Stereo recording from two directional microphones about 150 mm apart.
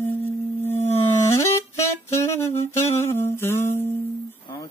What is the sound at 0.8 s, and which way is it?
Music, 45° left (ahead or behind).